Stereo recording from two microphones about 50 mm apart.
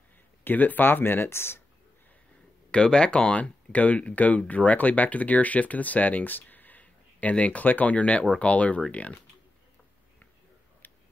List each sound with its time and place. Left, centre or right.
0.4 s speech: left
2.7 s speech: centre